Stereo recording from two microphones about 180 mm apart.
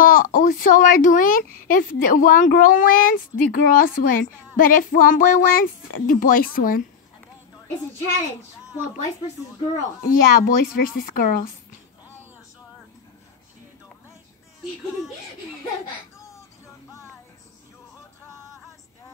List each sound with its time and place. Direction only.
0.0 s speech: 50° left (ahead or behind)
10.0 s speech: 50° left (ahead or behind)
16.2 s a sound: 15° left (ahead or behind)